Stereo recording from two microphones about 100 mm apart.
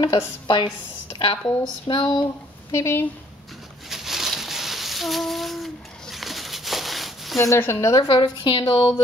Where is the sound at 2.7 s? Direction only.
30° left (ahead or behind).